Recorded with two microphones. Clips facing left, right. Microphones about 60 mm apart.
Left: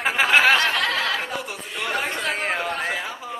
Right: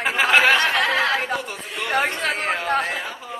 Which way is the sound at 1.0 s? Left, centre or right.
Right.